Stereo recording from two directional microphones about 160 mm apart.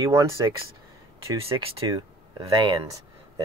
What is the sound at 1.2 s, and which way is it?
Speech, 20° right (ahead or behind).